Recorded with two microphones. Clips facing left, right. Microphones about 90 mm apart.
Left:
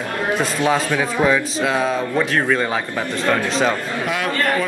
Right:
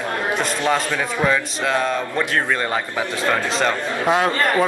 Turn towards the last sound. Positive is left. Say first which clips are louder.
# right 2 dB
turn(degrees=-20)  # may be behind; listen again after turning